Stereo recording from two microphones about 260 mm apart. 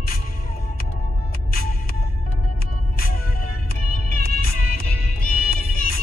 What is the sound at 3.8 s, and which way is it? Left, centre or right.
Music, left.